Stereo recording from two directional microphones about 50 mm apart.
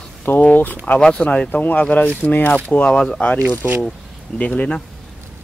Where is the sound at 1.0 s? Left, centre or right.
Left.